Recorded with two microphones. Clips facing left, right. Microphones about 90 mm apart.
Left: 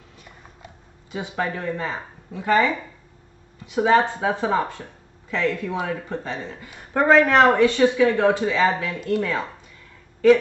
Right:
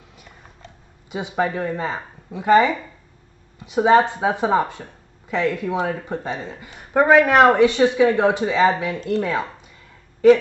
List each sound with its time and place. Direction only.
1.1 s a woman's voice: 20° right (ahead or behind)